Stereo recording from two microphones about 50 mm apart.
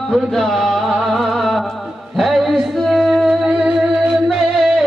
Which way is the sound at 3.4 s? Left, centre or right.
Right.